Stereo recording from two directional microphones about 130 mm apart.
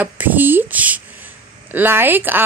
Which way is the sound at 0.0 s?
15° right (ahead or behind).